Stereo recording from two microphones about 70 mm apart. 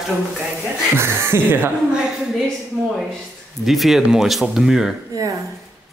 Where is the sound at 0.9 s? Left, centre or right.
Right.